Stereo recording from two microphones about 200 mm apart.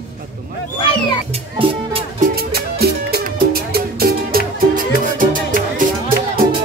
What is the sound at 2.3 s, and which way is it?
Music, 50° right (ahead or behind).